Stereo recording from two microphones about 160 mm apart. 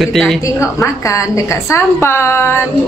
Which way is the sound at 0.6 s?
20° left (ahead or behind).